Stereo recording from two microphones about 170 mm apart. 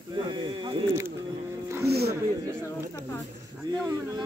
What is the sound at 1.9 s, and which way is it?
Music, 70° right (ahead or behind).